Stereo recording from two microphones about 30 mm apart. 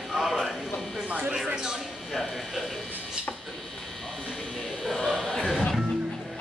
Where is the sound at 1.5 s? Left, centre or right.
Right.